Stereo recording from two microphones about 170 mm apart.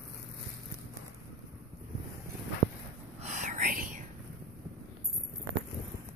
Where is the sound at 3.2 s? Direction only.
45° right (ahead or behind).